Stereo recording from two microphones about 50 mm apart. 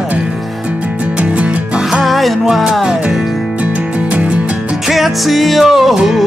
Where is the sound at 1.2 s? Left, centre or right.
Right.